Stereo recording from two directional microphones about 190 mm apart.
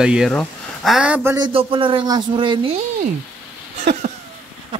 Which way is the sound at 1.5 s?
25° right (ahead or behind).